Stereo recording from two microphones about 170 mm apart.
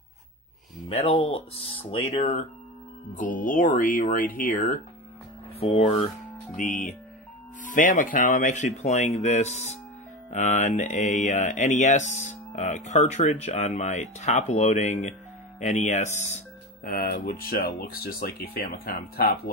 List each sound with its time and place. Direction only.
0.8 s speech: 35° left (ahead or behind)
3.2 s speech: 50° left (ahead or behind)
5.6 s speech: 35° left (ahead or behind)
6.5 s speech: 45° left (ahead or behind)